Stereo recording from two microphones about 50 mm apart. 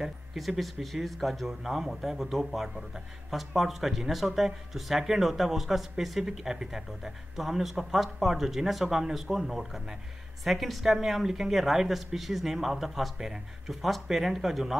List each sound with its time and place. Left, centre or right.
0.0 s speech: centre